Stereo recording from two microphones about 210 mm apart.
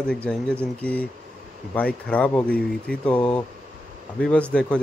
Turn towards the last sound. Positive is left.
turn(degrees=5)  # may be behind; listen again after turning